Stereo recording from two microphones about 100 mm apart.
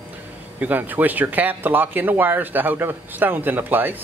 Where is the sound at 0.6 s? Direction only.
15° right (ahead or behind).